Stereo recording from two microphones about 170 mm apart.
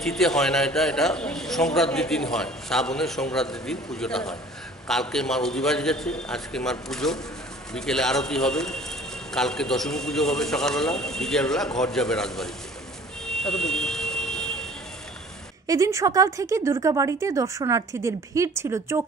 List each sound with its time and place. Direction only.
0.0 s a man's voice: centre (ahead or behind)
13.3 s vehicle: 5° left (ahead or behind)
15.6 s a woman's voice: 20° right (ahead or behind)